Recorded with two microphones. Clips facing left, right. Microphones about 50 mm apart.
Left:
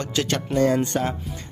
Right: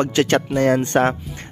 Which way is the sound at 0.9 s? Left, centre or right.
Right.